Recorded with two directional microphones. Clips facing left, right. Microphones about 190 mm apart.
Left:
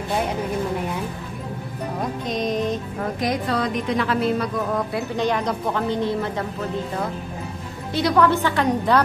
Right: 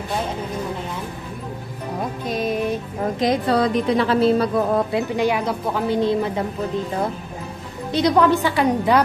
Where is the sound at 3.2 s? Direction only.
30° right (ahead or behind).